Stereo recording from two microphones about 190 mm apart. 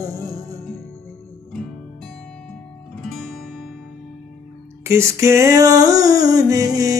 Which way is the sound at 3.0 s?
Centre (ahead or behind).